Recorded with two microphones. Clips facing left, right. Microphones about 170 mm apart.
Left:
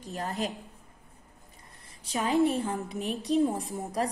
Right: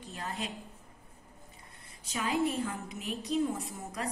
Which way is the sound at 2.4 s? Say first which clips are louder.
Left 5 dB; 35° left (ahead or behind).